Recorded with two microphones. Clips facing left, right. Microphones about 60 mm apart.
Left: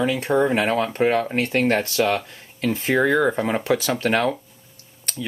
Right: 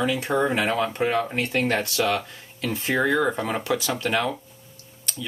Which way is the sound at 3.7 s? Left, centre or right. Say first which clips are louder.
Left 4 dB; left.